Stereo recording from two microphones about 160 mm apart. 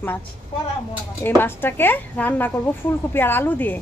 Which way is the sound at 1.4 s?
15° left (ahead or behind).